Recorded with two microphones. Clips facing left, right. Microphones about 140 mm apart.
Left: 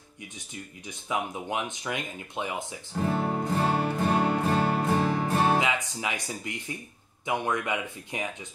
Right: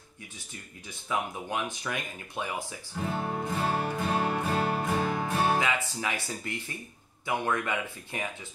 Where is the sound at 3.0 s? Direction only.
40° left (ahead or behind).